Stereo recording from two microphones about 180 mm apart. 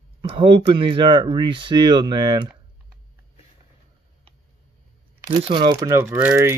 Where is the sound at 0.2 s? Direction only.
30° right (ahead or behind).